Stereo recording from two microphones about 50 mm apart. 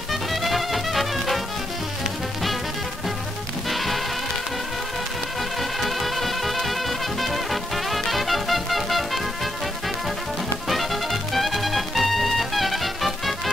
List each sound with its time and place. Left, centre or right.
0.1 s music: centre
3.7 s music: centre
5.6 s music: centre
10.7 s music: centre